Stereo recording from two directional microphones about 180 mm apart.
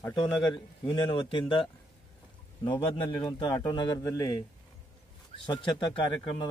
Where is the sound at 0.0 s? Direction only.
25° left (ahead or behind).